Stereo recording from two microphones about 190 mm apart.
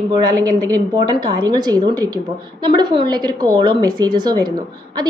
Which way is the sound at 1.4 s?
20° right (ahead or behind).